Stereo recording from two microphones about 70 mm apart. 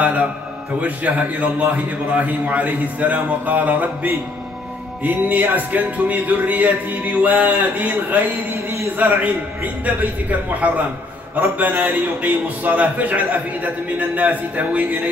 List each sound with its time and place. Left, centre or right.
0.0 s a man's voice: centre